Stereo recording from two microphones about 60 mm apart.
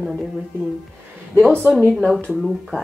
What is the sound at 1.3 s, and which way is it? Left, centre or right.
Speech, right.